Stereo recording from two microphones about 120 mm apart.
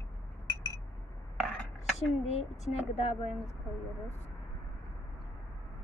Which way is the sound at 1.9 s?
65° left (ahead or behind).